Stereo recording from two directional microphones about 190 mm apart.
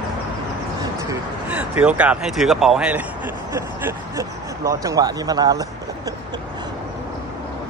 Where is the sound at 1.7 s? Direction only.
5° right (ahead or behind); by 6.7 s 20° right (ahead or behind).